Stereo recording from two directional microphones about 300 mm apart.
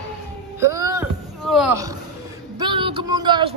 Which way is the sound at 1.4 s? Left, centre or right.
Centre.